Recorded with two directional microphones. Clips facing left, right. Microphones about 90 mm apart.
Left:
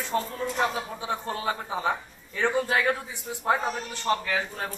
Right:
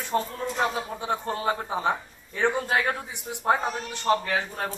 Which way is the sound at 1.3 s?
30° right (ahead or behind).